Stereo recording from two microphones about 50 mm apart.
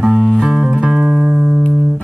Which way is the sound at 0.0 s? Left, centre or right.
Centre.